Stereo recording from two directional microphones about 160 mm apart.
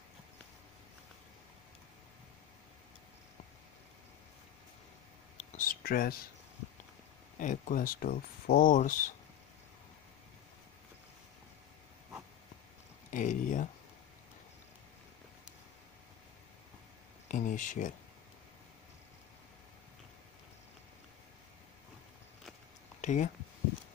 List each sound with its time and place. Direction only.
5.4 s speech: 65° left (ahead or behind)
7.3 s speech: 55° left (ahead or behind)
13.1 s speech: 55° left (ahead or behind)
17.3 s speech: 55° left (ahead or behind)
22.9 s speech: 50° left (ahead or behind)